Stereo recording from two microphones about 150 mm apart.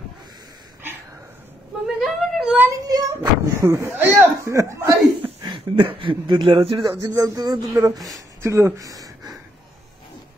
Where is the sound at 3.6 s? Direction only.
20° right (ahead or behind).